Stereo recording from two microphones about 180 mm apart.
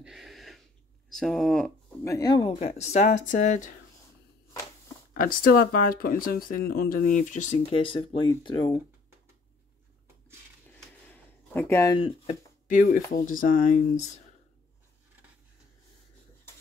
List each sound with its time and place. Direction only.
0.0 s a sound: centre (ahead or behind)
1.1 s speech: centre (ahead or behind)
2.0 s speech: 20° left (ahead or behind)
2.4 s speech: 35° left (ahead or behind)
5.1 s speech: 55° left (ahead or behind)
7.7 s speech: 30° left (ahead or behind)
11.5 s speech: 15° left (ahead or behind)
12.0 s speech: 40° left (ahead or behind)